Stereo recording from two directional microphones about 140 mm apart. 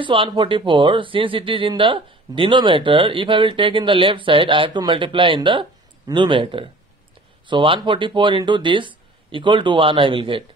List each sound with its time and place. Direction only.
0.0 s speech: 35° right (ahead or behind)